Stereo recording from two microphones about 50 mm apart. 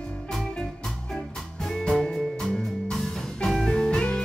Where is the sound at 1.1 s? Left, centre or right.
Centre.